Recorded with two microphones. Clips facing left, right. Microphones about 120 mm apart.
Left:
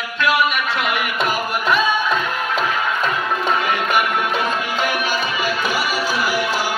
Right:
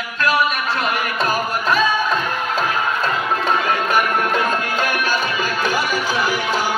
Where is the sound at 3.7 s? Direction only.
40° right (ahead or behind).